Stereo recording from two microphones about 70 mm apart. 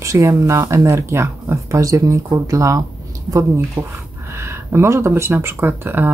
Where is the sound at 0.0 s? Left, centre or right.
Right.